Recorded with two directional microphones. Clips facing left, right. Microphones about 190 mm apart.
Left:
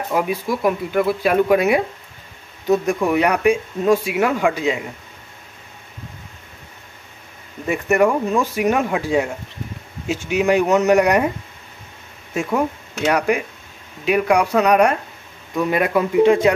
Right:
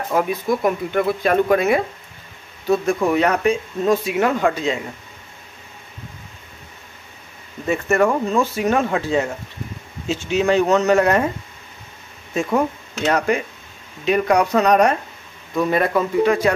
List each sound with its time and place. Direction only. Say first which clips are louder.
0.1 s speech: right 2 dB; 5° left (ahead or behind)
7.6 s speech: left 1 dB; 15° left (ahead or behind)
12.4 s speech: even; 5° left (ahead or behind)
16.2 s speech: left 4 dB; 25° left (ahead or behind)